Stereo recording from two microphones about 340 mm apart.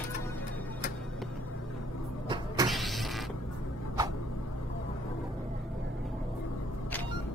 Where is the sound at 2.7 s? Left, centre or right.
Centre.